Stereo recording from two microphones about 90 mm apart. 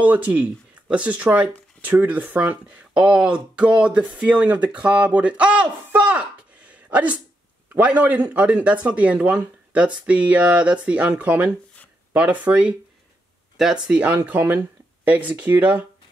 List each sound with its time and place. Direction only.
0.0 s speech: 15° right (ahead or behind)
6.7 s a sound: 15° right (ahead or behind)
7.7 s speech: 15° right (ahead or behind)